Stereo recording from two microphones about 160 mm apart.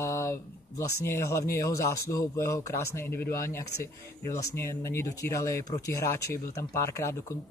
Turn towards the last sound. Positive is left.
turn(degrees=20)  # may be behind; listen again after turning